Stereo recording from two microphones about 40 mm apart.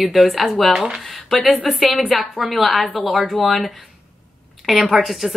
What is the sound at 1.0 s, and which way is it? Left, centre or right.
Speech, centre.